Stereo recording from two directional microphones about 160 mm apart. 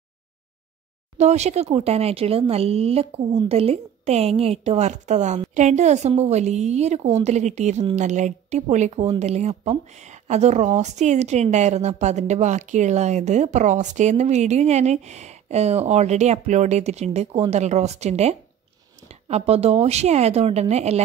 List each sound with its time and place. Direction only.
1.1 s a woman's voice: 45° right (ahead or behind)